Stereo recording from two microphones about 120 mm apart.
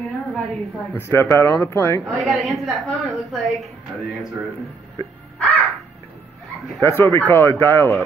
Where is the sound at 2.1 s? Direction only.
Centre (ahead or behind).